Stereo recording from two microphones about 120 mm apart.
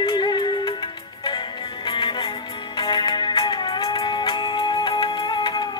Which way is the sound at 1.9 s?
40° left (ahead or behind).